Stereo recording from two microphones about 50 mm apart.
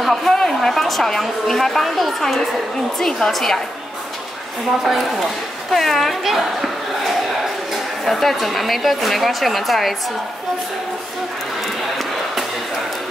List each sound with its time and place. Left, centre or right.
0.0 s a woman's voice: centre
4.8 s speech: centre
5.7 s a woman's voice: centre
8.0 s a woman's voice: centre
11.6 s music: centre